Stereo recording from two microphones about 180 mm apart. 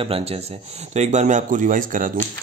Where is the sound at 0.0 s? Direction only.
35° right (ahead or behind).